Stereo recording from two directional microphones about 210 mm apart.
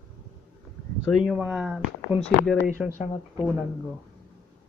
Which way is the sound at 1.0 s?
Centre (ahead or behind).